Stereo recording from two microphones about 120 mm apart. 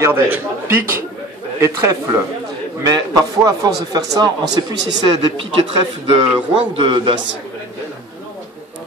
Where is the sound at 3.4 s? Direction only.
30° right (ahead or behind); by 5.7 s 50° right (ahead or behind).